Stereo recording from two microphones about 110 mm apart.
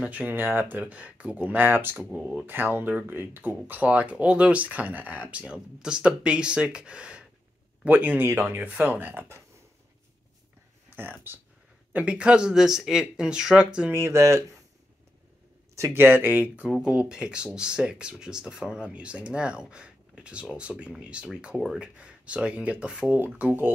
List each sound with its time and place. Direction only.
0.0 s speech: 15° right (ahead or behind)
2.0 s speech: centre (ahead or behind)
2.4 s speech: 15° right (ahead or behind)
11.0 s speech: 20° right (ahead or behind)
13.9 s speech: 25° right (ahead or behind)
15.7 s speech: 25° right (ahead or behind)